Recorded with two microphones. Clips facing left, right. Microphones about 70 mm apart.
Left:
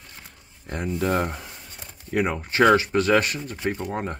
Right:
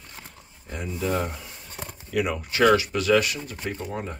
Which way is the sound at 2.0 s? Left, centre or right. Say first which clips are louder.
Left 2 dB; left.